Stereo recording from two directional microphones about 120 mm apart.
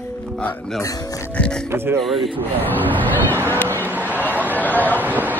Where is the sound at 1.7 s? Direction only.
20° right (ahead or behind).